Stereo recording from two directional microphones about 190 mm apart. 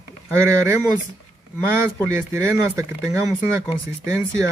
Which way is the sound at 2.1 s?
15° right (ahead or behind).